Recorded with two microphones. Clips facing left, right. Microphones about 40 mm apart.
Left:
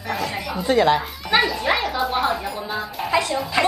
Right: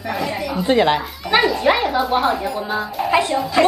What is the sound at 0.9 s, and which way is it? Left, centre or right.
Speech, centre.